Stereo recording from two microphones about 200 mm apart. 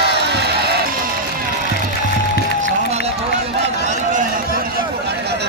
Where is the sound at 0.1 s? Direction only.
55° right (ahead or behind).